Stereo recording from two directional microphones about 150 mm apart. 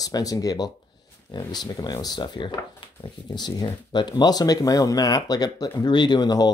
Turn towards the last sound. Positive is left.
turn(degrees=25)  # may be behind; listen again after turning